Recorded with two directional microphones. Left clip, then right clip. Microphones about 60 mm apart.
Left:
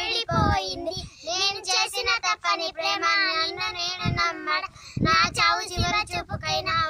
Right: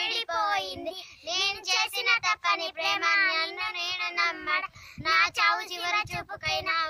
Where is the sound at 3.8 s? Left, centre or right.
Right.